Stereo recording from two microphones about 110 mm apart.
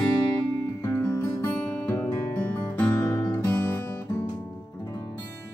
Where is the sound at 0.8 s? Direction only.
25° left (ahead or behind).